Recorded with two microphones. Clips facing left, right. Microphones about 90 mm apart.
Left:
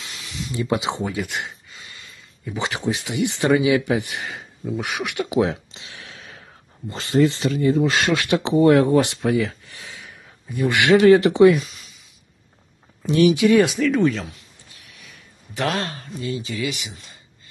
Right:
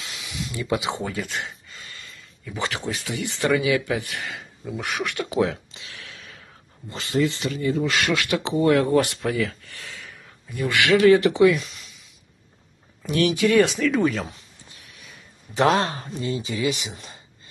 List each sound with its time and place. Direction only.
0.0 s a sound: centre (ahead or behind)
0.6 s speech: 25° left (ahead or behind)
11.6 s a sound: centre (ahead or behind)
13.0 s speech: 20° left (ahead or behind)
13.6 s speech: centre (ahead or behind)
15.5 s speech: 25° right (ahead or behind)
16.9 s speech: 40° right (ahead or behind)